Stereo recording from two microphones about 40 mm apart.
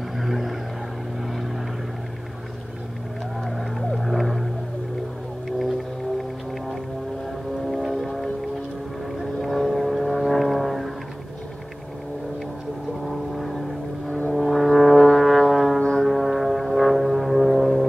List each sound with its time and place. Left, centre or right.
0.2 s vehicle: centre
3.4 s vehicle: centre
5.6 s music: centre
7.6 s vehicle: centre
13.0 s vehicle: centre
14.3 s brass instrument: centre
15.0 s music: centre
15.8 s music: centre
16.1 s music: centre